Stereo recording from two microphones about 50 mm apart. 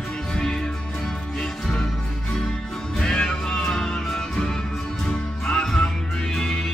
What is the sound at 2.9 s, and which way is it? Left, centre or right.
Music, centre.